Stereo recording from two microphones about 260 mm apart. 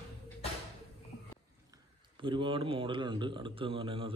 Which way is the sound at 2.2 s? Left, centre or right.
Centre.